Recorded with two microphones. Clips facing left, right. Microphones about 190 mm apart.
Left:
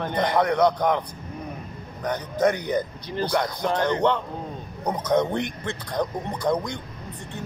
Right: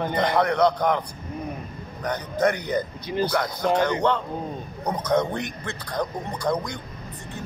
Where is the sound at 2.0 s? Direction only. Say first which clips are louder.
Left 1 dB; 15° left (ahead or behind).